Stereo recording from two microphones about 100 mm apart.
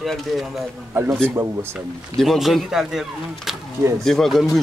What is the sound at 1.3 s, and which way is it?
Speech, 25° right (ahead or behind).